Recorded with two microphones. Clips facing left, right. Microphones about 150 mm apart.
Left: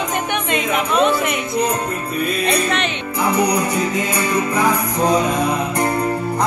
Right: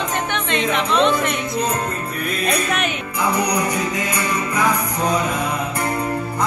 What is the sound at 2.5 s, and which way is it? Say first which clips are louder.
Speech: left 2 dB; 5° right (ahead or behind).